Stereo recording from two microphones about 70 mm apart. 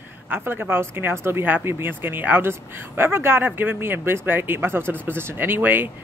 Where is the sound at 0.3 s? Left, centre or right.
Right.